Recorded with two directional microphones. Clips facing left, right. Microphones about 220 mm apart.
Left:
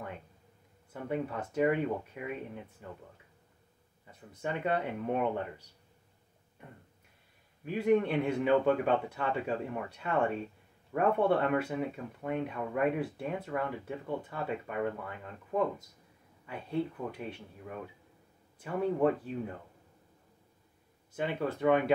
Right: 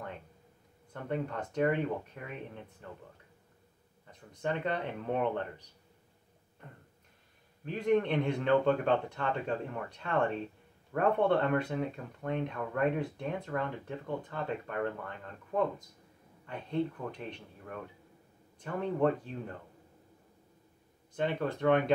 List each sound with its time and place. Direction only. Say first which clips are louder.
0.9 s speech: left 1 dB; 5° left (ahead or behind)
4.1 s speech: right 2 dB; 5° left (ahead or behind)
7.6 s speech: left 1 dB; 5° left (ahead or behind)
16.4 s speech: right 1 dB; 10° left (ahead or behind)
21.1 s speech: right 1 dB; 10° left (ahead or behind)